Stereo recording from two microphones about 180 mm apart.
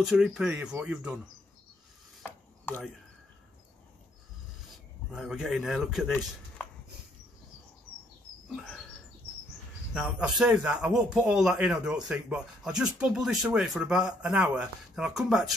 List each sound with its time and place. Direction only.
0.0 s speech: 5° right (ahead or behind)
2.2 s mechanisms: 10° left (ahead or behind)
5.1 s speech: centre (ahead or behind)
9.9 s speech: 5° right (ahead or behind)